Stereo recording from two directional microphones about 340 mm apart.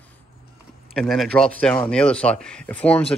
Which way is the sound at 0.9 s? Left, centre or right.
Centre.